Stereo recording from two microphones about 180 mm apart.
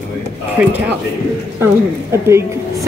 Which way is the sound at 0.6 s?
10° right (ahead or behind).